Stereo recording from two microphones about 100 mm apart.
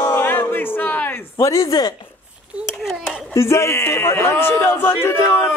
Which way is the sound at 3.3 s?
30° left (ahead or behind).